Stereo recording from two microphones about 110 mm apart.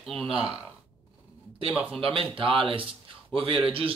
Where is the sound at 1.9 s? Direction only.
55° right (ahead or behind).